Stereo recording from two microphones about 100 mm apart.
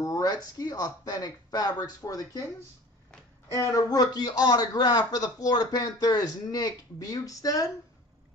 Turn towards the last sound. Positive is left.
turn(degrees=35)  # may be behind; listen again after turning